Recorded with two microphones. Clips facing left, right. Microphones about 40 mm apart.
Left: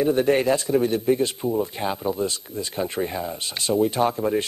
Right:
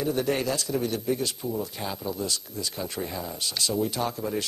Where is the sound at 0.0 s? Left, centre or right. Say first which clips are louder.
Left 7 dB; left.